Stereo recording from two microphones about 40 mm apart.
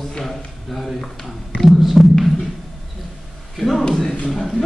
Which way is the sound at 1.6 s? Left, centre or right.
Centre.